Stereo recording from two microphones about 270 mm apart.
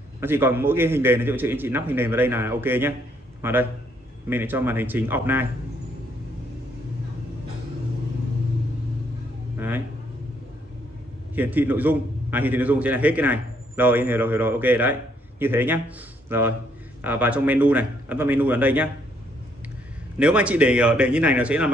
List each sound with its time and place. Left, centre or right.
0.2 s a man's voice: centre
9.6 s a sound: centre
11.3 s a man's voice: centre
20.2 s a man's voice: centre